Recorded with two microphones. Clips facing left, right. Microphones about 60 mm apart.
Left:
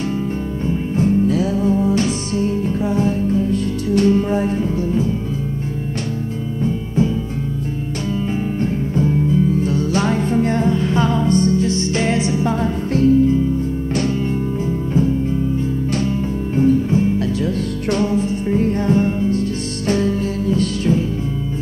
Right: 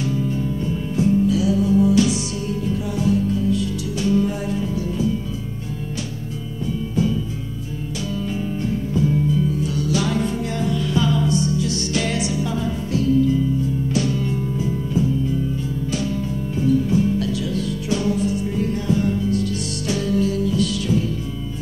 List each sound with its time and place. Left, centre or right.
0.9 s music: left
8.9 s music: left
16.5 s music: left